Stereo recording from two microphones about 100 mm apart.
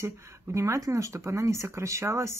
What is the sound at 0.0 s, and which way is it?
Speech, 30° right (ahead or behind).